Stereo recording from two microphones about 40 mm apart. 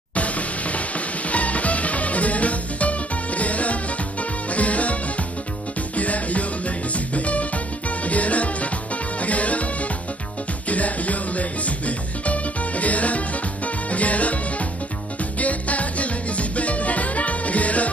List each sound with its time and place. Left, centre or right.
0.1 s music: left
5.9 s music: left
10.7 s music: left